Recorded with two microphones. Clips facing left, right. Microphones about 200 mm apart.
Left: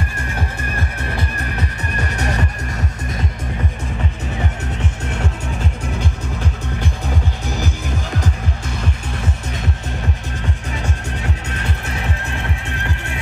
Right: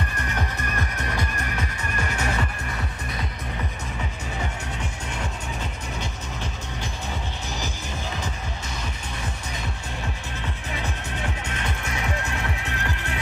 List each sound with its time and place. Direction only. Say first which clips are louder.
0.7 s music: left 3 dB; 35° left (ahead or behind)